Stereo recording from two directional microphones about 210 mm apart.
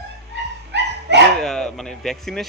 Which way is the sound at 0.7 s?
55° right (ahead or behind).